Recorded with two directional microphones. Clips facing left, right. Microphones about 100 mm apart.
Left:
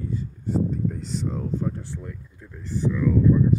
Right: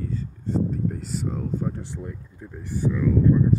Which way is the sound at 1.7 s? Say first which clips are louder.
Even; 20° right (ahead or behind).